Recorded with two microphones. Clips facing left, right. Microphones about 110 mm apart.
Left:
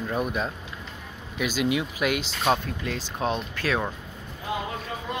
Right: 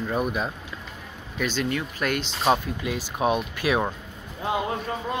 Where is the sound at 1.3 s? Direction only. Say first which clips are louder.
Left 1 dB; 5° left (ahead or behind).